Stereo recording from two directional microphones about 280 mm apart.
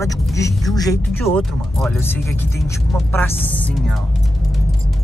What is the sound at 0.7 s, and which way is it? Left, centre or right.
Speech, centre.